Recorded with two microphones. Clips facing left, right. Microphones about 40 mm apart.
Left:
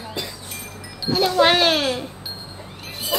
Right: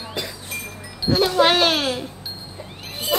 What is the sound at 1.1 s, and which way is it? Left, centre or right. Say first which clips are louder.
Speech: even; centre.